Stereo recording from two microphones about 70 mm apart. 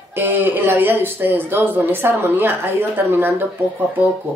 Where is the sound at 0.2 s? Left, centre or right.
Right.